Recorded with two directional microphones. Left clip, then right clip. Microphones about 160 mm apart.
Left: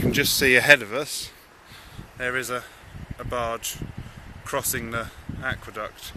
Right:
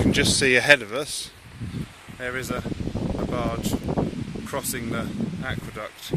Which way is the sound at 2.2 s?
10° left (ahead or behind).